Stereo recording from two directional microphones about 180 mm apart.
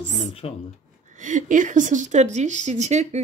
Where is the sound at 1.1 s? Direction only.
45° right (ahead or behind).